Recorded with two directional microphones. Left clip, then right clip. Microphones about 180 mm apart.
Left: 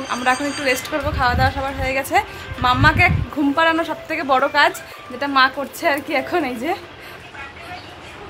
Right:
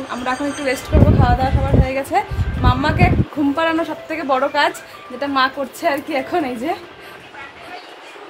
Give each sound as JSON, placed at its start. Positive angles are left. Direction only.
{"t": 0.1, "sound": "speech", "side_deg": 10}